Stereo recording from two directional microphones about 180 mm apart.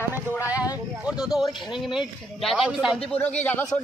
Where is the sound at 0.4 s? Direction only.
10° right (ahead or behind).